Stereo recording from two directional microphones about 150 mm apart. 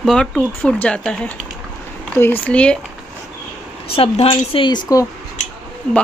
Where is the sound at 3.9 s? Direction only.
40° left (ahead or behind).